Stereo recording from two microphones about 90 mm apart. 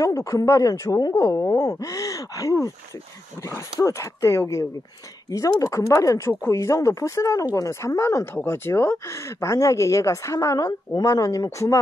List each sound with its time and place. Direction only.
0.0 s speech: 40° left (ahead or behind)